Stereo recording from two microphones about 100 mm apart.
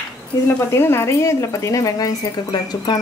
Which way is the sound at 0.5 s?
25° left (ahead or behind).